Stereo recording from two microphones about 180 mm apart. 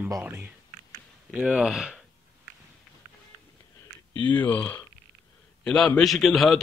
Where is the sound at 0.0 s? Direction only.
10° right (ahead or behind).